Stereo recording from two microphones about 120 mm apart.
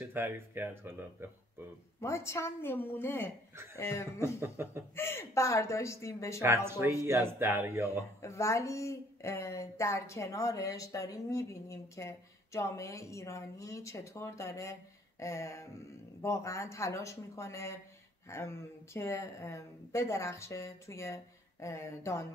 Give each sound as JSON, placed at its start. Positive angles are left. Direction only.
{"t": 0.0, "sound": "speech", "side_deg": -20}
{"t": 2.0, "sound": "speech", "side_deg": 25}
{"t": 4.4, "sound": "speech", "side_deg": -20}
{"t": 4.9, "sound": "speech", "side_deg": 20}
{"t": 6.4, "sound": "speech", "side_deg": -20}
{"t": 8.2, "sound": "speech", "side_deg": 25}